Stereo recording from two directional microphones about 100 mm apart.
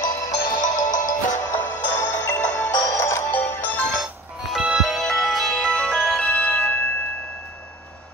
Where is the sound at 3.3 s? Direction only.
15° left (ahead or behind).